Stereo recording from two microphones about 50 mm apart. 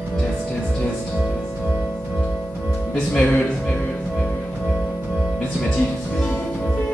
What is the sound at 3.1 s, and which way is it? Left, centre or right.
Music, left.